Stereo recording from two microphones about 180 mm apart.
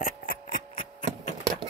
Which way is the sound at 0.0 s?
50° left (ahead or behind).